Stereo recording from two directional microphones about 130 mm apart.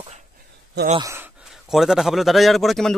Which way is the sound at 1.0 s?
25° right (ahead or behind).